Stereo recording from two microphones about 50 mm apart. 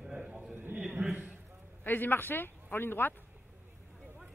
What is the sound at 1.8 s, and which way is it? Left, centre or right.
Speech, left.